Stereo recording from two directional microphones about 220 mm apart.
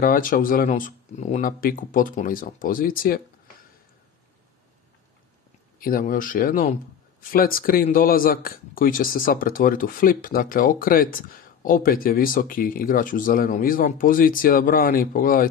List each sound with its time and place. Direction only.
0.0 s speech: 40° left (ahead or behind)
5.8 s speech: 40° left (ahead or behind)